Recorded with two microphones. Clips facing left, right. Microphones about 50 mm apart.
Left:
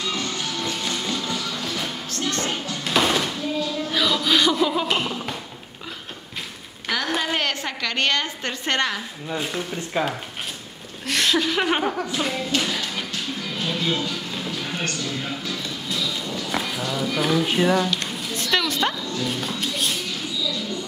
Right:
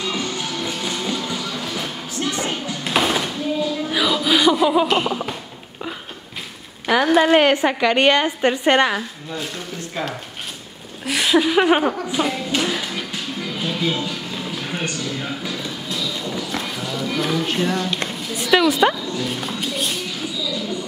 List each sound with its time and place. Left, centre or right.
0.0 s music: centre
4.8 s a sound: centre
7.2 s a woman's voice: right
9.9 s speech: left
11.1 s speech: centre
12.1 s music: centre
15.9 s a sound: centre
18.0 s music: centre